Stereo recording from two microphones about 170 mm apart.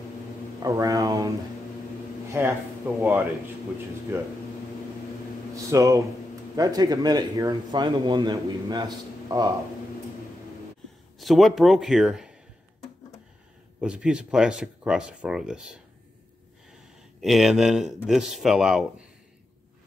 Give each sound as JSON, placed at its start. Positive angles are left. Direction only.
{"t": 0.6, "sound": "speech", "side_deg": -20}
{"t": 2.3, "sound": "a man's voice", "side_deg": -15}
{"t": 5.7, "sound": "speech", "side_deg": -20}
{"t": 11.1, "sound": "speech", "side_deg": 0}
{"t": 13.7, "sound": "speech", "side_deg": -5}